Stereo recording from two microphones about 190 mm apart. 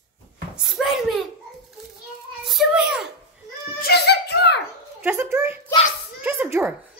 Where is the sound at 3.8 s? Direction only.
60° left (ahead or behind).